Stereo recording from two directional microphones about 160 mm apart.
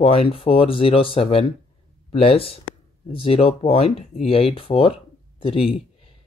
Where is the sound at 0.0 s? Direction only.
35° left (ahead or behind).